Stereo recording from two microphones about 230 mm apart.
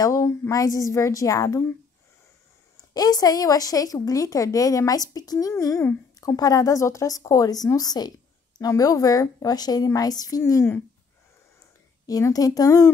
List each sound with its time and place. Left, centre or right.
0.0 s speech: centre
2.9 s speech: centre
12.1 s speech: centre